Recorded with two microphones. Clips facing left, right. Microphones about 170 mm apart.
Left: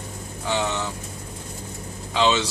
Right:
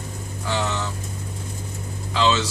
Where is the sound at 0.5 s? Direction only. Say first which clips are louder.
Left 1 dB; 15° left (ahead or behind).